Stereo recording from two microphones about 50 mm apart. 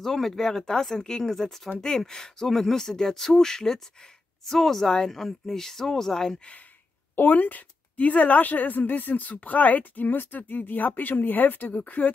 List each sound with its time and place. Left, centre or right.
0.0 s speech: centre
7.2 s a woman's voice: left